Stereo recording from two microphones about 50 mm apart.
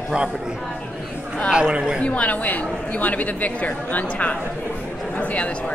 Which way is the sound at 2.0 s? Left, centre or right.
Left.